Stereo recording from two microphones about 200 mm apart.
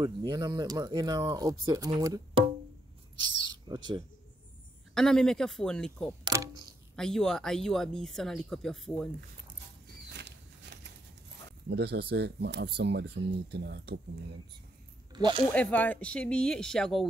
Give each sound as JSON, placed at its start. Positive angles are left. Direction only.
{"t": 0.0, "sound": "speech", "side_deg": -20}
{"t": 3.6, "sound": "speech", "side_deg": -20}
{"t": 4.9, "sound": "speech", "side_deg": 5}
{"t": 6.2, "sound": "a sound", "side_deg": -15}
{"t": 7.0, "sound": "speech", "side_deg": 5}
{"t": 10.1, "sound": "a sound", "side_deg": -60}
{"t": 11.7, "sound": "speech", "side_deg": -55}
{"t": 15.1, "sound": "speech", "side_deg": -20}
{"t": 15.5, "sound": "speech", "side_deg": 10}